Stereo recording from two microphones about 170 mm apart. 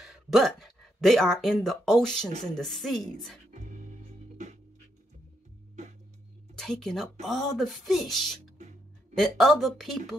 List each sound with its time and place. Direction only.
0.0 s speech: centre (ahead or behind)
3.5 s music: 45° right (ahead or behind)
6.5 s speech: centre (ahead or behind)